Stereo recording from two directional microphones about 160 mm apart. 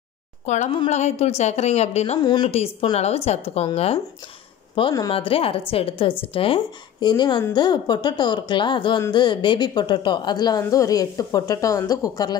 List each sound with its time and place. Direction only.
0.5 s a woman's voice: 45° left (ahead or behind)
2.1 s a woman's voice: 25° left (ahead or behind)
2.5 s a woman's voice: 40° left (ahead or behind)
4.7 s a woman's voice: 25° left (ahead or behind)